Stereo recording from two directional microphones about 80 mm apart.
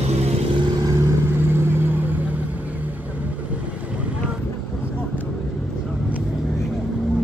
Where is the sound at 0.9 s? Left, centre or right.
Right.